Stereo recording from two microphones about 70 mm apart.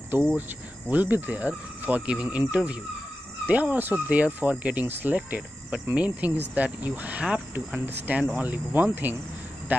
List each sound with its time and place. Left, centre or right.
0.1 s speech: right